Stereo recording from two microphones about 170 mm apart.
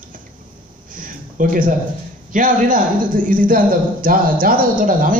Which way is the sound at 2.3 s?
50° right (ahead or behind).